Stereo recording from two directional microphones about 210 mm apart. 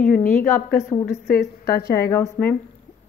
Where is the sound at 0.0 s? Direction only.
40° left (ahead or behind).